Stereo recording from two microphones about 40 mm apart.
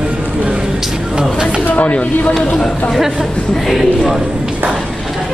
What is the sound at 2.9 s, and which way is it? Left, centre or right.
Speech, centre.